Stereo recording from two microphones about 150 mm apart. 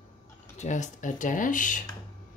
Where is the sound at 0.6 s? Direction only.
55° left (ahead or behind).